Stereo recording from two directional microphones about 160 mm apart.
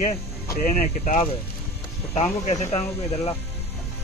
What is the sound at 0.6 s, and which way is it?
Speech, 50° left (ahead or behind).